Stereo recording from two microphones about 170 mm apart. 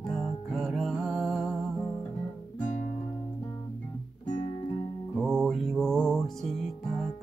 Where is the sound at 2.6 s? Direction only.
45° left (ahead or behind).